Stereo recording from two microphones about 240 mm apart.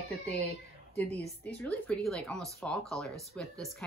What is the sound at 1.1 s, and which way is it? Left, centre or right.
Speech, right.